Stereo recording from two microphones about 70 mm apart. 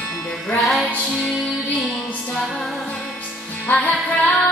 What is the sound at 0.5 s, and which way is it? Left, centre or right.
Child singing, centre.